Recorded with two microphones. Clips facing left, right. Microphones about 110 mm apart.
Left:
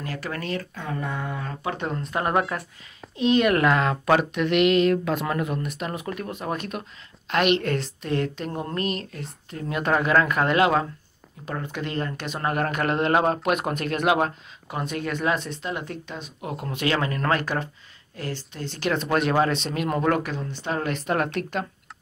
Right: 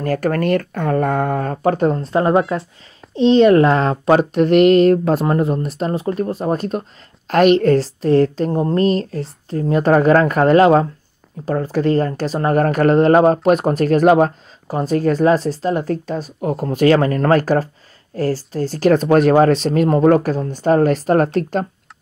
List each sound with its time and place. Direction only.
0.0 s speech: 50° right (ahead or behind)